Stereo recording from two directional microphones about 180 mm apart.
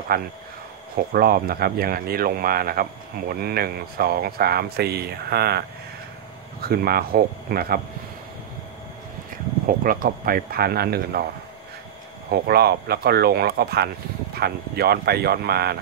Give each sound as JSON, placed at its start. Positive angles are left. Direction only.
{"t": 0.1, "sound": "speech", "side_deg": -55}
{"t": 9.8, "sound": "speech", "side_deg": -55}
{"t": 12.3, "sound": "speech", "side_deg": -60}